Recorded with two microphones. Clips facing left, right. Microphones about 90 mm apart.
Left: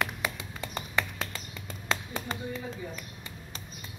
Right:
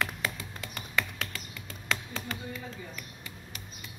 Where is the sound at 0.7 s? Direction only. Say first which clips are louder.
Left 1 dB; 25° left (ahead or behind).